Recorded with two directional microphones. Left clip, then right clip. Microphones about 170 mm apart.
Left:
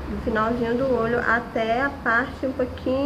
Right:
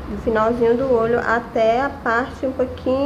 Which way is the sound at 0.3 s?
15° right (ahead or behind).